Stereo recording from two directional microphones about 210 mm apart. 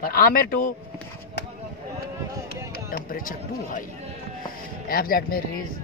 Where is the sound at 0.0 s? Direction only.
45° left (ahead or behind).